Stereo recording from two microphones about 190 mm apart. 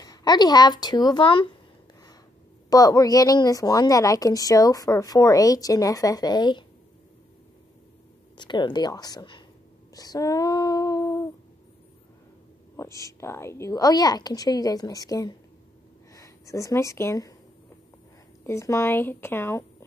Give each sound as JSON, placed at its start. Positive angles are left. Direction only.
{"t": 0.0, "sound": "a woman's voice", "side_deg": 20}
{"t": 2.7, "sound": "a woman's voice", "side_deg": 20}
{"t": 8.4, "sound": "a woman's voice", "side_deg": 25}
{"t": 9.9, "sound": "female singing", "side_deg": 20}
{"t": 12.7, "sound": "a woman's voice", "side_deg": 15}
{"t": 18.4, "sound": "speech", "side_deg": 15}